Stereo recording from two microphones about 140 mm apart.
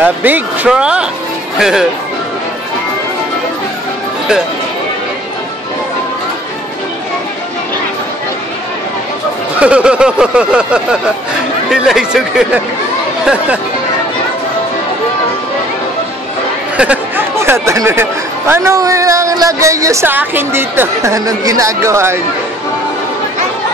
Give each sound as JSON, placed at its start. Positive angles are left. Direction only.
{"t": 0.0, "sound": "a sound", "side_deg": -10}
{"t": 1.6, "sound": "speech", "side_deg": -5}
{"t": 9.6, "sound": "a sound", "side_deg": -10}
{"t": 11.7, "sound": "speech", "side_deg": -5}
{"t": 16.7, "sound": "speech", "side_deg": -10}
{"t": 17.4, "sound": "speech", "side_deg": -20}